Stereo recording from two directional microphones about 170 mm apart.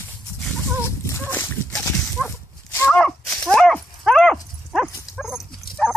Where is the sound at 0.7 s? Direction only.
15° left (ahead or behind); by 5.4 s centre (ahead or behind).